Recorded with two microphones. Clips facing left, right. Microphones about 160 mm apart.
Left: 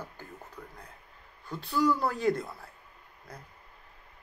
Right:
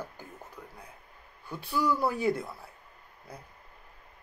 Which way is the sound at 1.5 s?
10° right (ahead or behind).